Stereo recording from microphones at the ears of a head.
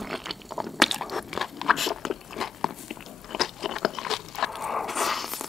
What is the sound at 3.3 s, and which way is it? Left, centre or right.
Crunch, left.